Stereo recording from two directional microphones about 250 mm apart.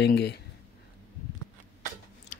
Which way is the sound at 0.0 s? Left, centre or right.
Left.